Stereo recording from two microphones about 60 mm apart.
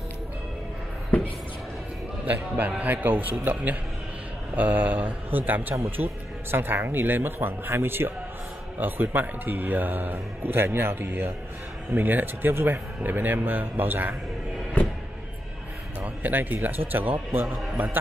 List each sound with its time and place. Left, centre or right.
2.2 s a man's voice: right
16.2 s speech: right